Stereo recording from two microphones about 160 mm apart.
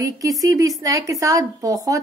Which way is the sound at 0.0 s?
20° right (ahead or behind).